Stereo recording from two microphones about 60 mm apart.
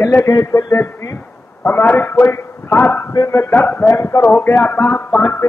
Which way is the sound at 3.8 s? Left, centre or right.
Left.